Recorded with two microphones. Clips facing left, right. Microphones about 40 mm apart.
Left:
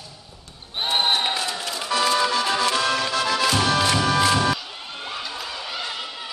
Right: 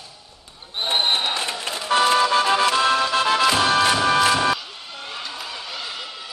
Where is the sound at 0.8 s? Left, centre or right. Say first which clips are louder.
Right 1 dB; centre.